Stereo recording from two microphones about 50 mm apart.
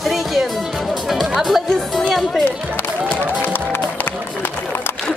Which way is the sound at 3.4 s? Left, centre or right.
Left.